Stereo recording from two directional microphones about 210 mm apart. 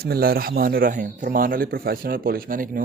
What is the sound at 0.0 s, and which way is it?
A man's voice, 45° right (ahead or behind).